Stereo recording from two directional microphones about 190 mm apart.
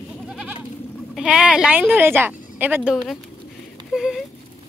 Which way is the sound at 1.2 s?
5° right (ahead or behind).